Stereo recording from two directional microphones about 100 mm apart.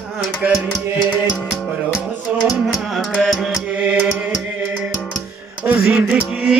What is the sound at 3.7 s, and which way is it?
Mantra, 15° right (ahead or behind).